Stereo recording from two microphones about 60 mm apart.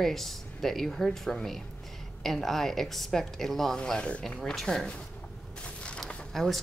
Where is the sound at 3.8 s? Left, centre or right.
Centre.